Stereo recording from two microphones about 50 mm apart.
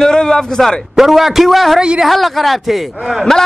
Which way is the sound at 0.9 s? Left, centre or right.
Centre.